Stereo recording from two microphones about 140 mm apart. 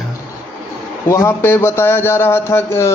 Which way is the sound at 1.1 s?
20° left (ahead or behind).